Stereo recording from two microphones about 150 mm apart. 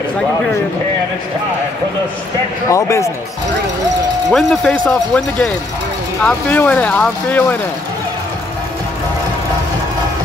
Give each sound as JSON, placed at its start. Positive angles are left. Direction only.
{"t": 2.7, "sound": "speech", "side_deg": 20}
{"t": 4.3, "sound": "speech", "side_deg": 0}